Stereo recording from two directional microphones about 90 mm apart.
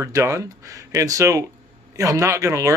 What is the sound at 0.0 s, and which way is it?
Speech, 35° right (ahead or behind).